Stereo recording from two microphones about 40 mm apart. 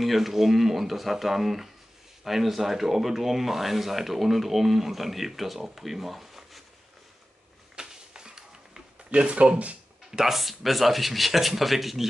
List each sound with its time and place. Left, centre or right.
0.0 s speech: centre
7.7 s a sound: centre
9.1 s speech: right
10.1 s speech: centre